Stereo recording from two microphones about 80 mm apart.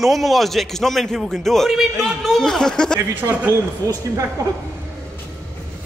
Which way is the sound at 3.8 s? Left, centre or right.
Right.